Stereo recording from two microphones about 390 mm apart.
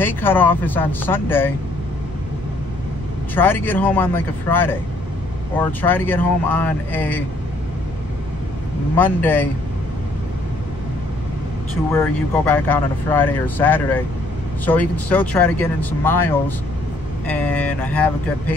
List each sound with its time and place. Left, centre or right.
0.0 s speech: centre
3.3 s speech: centre
8.9 s speech: centre
11.9 s speech: centre